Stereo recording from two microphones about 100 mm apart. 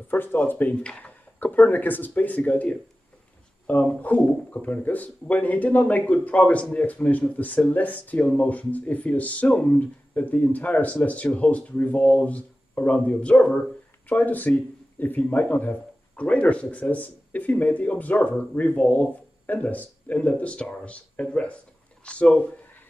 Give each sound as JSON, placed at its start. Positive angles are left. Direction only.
{"t": 0.1, "sound": "a man's voice", "side_deg": 20}